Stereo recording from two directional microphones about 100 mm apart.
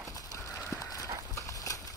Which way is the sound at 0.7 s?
35° left (ahead or behind).